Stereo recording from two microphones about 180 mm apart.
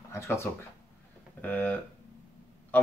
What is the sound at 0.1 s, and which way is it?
Speech, 15° left (ahead or behind).